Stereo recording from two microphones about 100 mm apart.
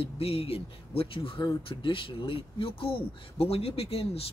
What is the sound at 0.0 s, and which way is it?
Speech, 75° left (ahead or behind).